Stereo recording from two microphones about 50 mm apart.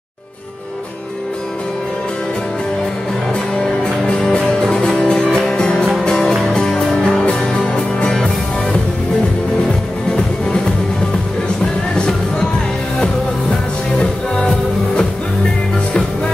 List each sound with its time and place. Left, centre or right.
3.5 s music: centre
9.7 s music: centre
11.9 s music: centre
13.9 s music: centre